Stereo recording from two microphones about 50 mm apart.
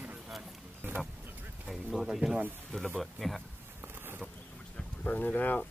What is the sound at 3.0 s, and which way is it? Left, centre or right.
Speech, centre.